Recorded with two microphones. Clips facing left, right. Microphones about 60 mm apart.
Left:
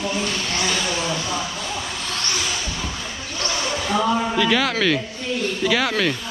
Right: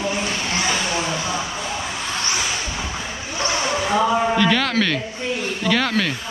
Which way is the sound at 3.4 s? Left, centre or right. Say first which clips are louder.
Right 3 dB; centre.